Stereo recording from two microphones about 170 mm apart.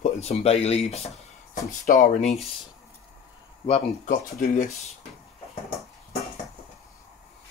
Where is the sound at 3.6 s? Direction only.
45° left (ahead or behind).